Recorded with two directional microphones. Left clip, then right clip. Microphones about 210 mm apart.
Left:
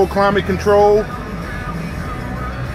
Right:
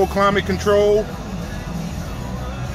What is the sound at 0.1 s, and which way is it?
Speech, 10° left (ahead or behind).